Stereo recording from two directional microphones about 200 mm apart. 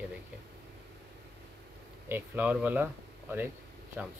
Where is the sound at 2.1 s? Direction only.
10° right (ahead or behind).